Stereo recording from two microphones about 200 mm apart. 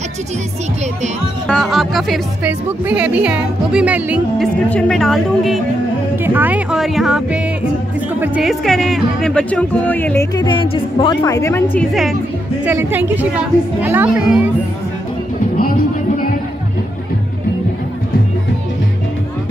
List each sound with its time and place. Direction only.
1.5 s speech: centre (ahead or behind)
4.6 s speech: 5° left (ahead or behind)
10.3 s a woman's voice: 20° left (ahead or behind); by 14.5 s 10° right (ahead or behind)
15.5 s music: 45° left (ahead or behind)